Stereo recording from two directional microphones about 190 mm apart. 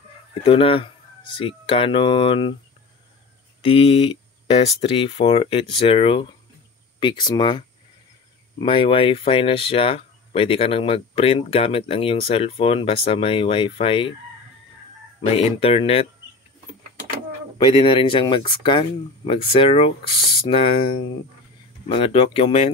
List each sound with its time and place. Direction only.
0.3 s speech: 30° left (ahead or behind)
3.6 s speech: 30° left (ahead or behind)
15.2 s speech: 30° left (ahead or behind)
17.6 s speech: 25° left (ahead or behind)